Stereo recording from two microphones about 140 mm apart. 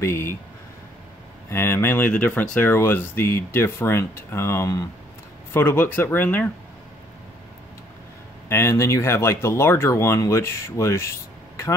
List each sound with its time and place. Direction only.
0.0 s speech: 20° left (ahead or behind)
1.5 s speech: 20° left (ahead or behind)
8.5 s speech: 20° left (ahead or behind)